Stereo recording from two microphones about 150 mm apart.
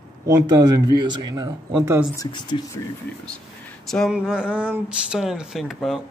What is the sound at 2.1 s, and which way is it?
Speech, 30° left (ahead or behind).